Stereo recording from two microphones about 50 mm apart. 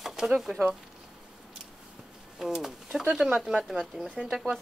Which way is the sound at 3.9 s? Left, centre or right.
Right.